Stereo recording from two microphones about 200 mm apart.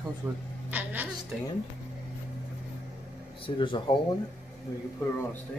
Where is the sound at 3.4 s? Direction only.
25° left (ahead or behind).